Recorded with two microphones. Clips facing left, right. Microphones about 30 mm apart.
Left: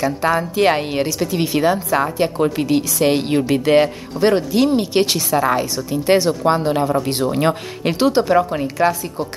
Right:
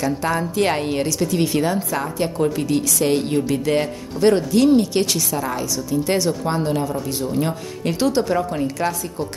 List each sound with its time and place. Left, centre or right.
0.0 s a woman's voice: centre
4.3 s speech: centre
4.7 s a woman's voice: left
7.9 s a woman's voice: left